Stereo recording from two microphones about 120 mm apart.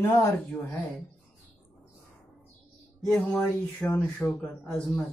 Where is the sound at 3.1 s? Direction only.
5° left (ahead or behind).